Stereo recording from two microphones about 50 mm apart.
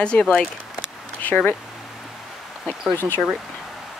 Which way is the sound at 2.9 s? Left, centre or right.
Left.